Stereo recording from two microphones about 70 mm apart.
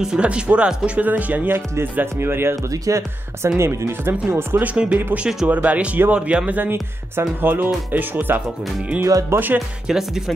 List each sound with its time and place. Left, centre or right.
0.0 s speech: centre; by 2.5 s right
2.7 s speech: right
4.6 s speech: centre
9.0 s speech: right
9.8 s speech: centre